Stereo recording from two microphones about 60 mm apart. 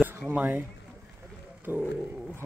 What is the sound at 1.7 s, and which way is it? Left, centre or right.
Speech, right.